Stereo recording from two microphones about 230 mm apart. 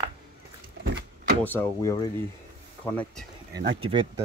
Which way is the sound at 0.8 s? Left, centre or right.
Right.